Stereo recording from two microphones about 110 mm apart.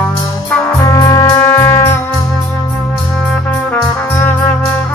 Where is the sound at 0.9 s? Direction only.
30° left (ahead or behind).